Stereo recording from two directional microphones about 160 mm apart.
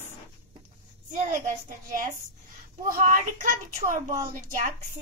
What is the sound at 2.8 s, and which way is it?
Speech, 60° right (ahead or behind).